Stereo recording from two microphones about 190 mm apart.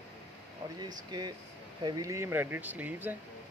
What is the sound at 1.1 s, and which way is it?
Speech, 20° right (ahead or behind).